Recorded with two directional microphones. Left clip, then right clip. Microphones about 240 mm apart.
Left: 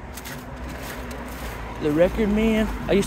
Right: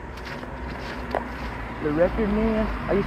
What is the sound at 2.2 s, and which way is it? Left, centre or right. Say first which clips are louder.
Speech: left 2 dB; left.